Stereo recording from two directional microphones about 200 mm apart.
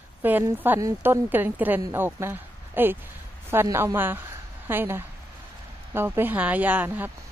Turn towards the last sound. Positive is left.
turn(degrees=-10)  # may be behind; listen again after turning